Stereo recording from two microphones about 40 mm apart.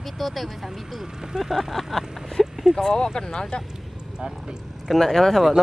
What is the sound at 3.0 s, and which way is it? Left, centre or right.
Speech, centre.